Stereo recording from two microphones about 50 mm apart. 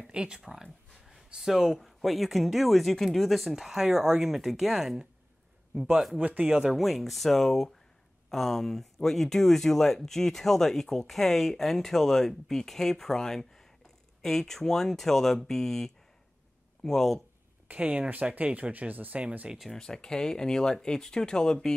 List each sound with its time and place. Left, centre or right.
0.1 s speech: centre
0.5 s speech: centre
6.1 s speech: right
6.7 s speech: centre
17.6 s speech: right
19.7 s speech: centre